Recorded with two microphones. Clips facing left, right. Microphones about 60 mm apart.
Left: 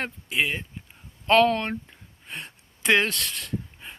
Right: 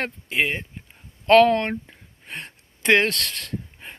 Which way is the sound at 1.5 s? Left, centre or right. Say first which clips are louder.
Right 4 dB; right.